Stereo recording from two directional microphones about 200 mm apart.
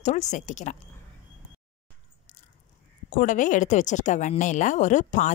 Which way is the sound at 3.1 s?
40° left (ahead or behind).